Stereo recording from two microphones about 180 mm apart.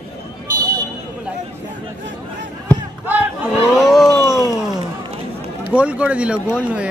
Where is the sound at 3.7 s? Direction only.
Centre (ahead or behind).